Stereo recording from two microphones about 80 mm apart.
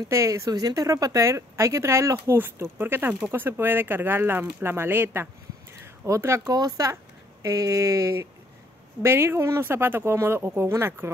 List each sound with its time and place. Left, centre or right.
0.1 s a woman's voice: right
6.0 s a woman's voice: right
6.4 s a woman's voice: right